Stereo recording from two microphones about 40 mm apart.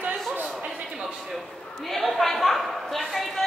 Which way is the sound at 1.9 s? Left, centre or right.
Centre.